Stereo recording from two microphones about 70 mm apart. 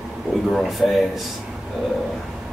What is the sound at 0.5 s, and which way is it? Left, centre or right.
Speech, centre.